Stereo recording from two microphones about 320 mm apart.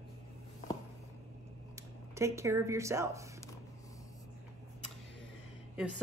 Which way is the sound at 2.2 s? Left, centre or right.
Centre.